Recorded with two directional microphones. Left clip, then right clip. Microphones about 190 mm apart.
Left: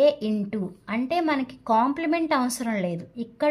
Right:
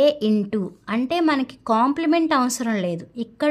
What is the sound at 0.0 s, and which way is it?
A woman's voice, 30° right (ahead or behind).